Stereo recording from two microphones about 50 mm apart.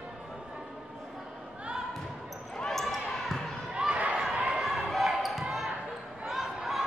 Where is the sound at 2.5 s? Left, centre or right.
Centre.